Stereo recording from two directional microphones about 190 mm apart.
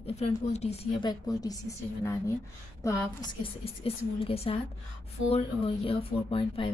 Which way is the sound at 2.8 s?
15° left (ahead or behind).